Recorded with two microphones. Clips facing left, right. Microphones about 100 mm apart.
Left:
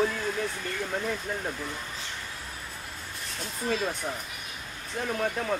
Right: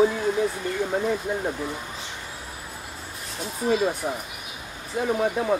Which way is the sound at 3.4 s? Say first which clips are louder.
Right 7 dB; 10° right (ahead or behind).